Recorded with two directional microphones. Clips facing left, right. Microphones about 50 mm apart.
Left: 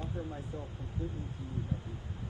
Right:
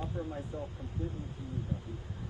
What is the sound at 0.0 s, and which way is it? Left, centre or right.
Speech, right.